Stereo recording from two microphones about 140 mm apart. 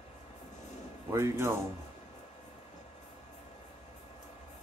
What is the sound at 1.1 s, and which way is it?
Speech, 20° right (ahead or behind).